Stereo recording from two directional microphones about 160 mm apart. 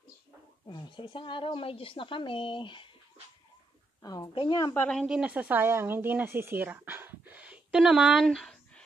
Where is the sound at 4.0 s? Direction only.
25° left (ahead or behind).